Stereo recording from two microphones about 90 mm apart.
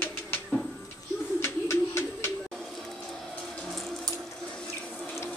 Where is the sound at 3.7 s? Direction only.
5° left (ahead or behind).